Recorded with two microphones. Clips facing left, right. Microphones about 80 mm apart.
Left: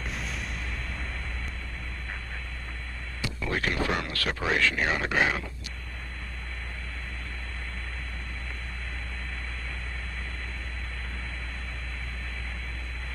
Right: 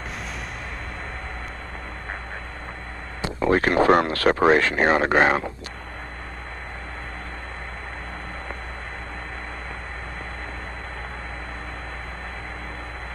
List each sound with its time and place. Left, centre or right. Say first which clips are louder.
3.2 s speech: right 10 dB; right